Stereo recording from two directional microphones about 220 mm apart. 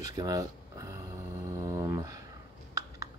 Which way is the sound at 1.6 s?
15° right (ahead or behind).